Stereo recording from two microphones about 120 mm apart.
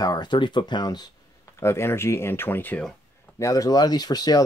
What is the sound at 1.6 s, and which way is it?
Speech, 20° left (ahead or behind).